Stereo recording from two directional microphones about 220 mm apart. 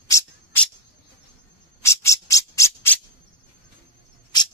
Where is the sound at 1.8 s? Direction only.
15° left (ahead or behind).